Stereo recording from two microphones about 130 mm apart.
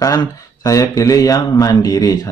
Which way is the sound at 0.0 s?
25° left (ahead or behind).